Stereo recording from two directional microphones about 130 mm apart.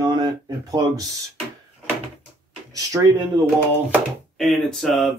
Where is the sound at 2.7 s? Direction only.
25° right (ahead or behind).